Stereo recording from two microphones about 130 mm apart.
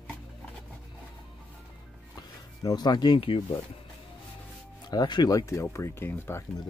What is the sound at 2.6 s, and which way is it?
Speech, 35° left (ahead or behind).